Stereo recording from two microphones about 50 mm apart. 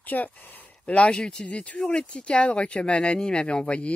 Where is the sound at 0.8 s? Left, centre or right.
Left.